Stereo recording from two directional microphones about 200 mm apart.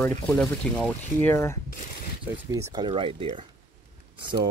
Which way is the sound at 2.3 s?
15° right (ahead or behind).